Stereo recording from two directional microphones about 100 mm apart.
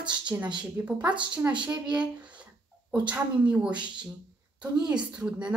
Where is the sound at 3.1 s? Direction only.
10° right (ahead or behind).